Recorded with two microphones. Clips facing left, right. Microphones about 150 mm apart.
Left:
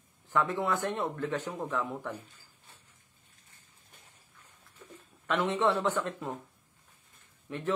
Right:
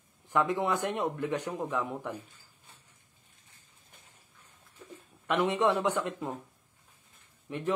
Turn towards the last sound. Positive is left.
turn(degrees=-10)  # may be behind; listen again after turning